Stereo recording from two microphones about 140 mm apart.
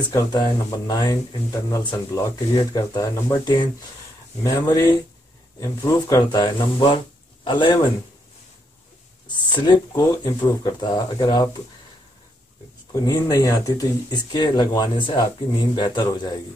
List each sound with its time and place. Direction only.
0.1 s speech: 25° left (ahead or behind)
9.4 s speech: 30° left (ahead or behind)
12.9 s speech: 25° left (ahead or behind)